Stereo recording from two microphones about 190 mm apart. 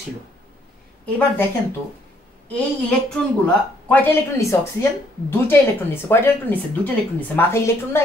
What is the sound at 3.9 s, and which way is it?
A woman's voice, 10° left (ahead or behind).